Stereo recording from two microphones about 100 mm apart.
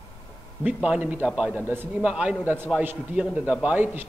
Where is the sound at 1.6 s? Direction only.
20° right (ahead or behind).